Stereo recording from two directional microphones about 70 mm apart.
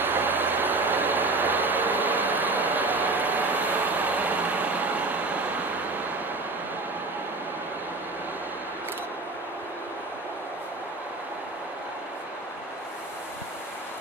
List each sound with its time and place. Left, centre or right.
0.0 s vehicle: right